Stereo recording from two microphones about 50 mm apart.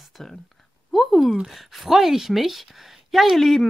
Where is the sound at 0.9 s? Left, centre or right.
Centre.